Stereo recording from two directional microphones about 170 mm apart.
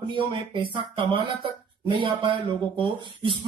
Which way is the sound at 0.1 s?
30° right (ahead or behind).